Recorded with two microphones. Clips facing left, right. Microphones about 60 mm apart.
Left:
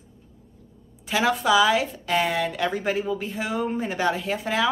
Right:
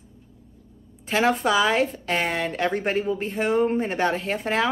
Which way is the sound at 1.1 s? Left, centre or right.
Right.